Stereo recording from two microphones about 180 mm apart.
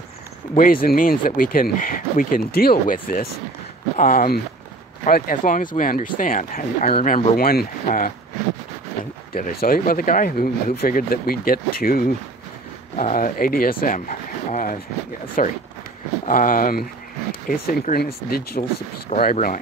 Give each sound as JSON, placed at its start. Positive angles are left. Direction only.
{"t": 0.6, "sound": "speech", "side_deg": 50}
{"t": 7.1, "sound": "speech", "side_deg": 35}
{"t": 7.3, "sound": "speech", "side_deg": 55}
{"t": 9.3, "sound": "speech", "side_deg": 55}
{"t": 18.6, "sound": "speech", "side_deg": 40}